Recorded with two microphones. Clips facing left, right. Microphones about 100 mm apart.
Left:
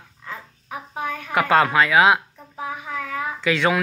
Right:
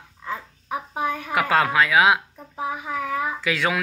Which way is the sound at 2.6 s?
15° right (ahead or behind).